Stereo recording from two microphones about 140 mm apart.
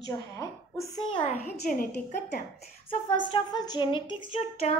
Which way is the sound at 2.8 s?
35° left (ahead or behind).